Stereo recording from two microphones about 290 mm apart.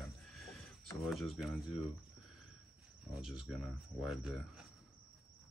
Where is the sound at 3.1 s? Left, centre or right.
Centre.